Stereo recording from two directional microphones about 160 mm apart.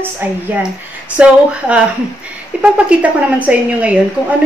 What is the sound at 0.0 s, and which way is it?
A woman's voice, 10° right (ahead or behind).